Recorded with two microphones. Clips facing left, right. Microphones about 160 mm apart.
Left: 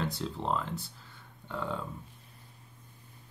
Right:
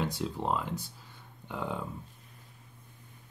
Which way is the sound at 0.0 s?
10° right (ahead or behind).